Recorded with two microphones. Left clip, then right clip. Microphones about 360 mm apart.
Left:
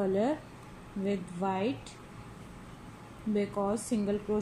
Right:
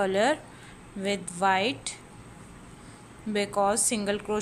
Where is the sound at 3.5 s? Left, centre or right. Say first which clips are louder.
Right 7 dB; right.